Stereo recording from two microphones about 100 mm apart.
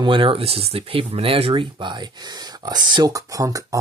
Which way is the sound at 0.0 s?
60° right (ahead or behind).